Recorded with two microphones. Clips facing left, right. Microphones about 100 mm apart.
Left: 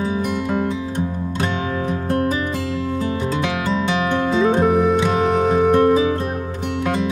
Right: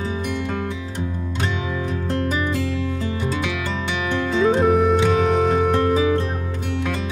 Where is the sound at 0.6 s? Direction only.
20° left (ahead or behind).